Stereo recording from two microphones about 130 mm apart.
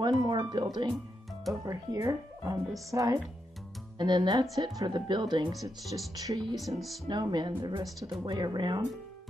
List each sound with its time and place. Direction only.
0.0 s speech: 35° right (ahead or behind)
6.5 s speech: centre (ahead or behind)
7.1 s speech: 35° right (ahead or behind)